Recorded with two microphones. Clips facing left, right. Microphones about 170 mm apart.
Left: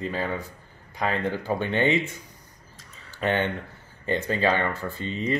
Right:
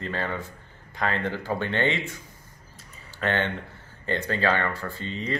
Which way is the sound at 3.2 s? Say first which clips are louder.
Left 2 dB; 15° left (ahead or behind).